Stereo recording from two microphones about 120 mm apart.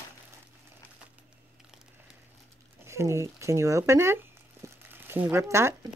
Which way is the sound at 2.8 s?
25° right (ahead or behind).